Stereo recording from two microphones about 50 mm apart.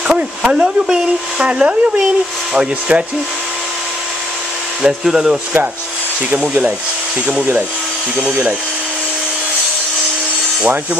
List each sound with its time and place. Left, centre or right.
0.1 s speech: centre
4.8 s speech: centre
6.3 s speech: right